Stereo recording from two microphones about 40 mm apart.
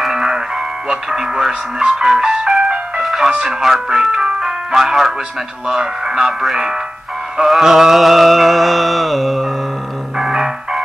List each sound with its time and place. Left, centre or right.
0.1 s music: centre
0.8 s ice cream truck: centre
3.0 s music: centre
3.4 s speech: centre
5.7 s ice cream truck: centre
7.4 s mantra: centre
10.1 s music: centre